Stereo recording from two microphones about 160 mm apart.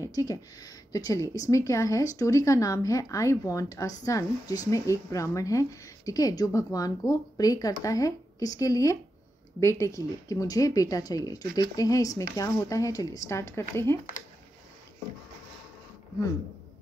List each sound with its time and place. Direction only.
0.0 s speech: 20° left (ahead or behind)